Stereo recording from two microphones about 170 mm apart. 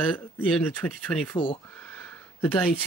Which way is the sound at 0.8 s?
10° left (ahead or behind).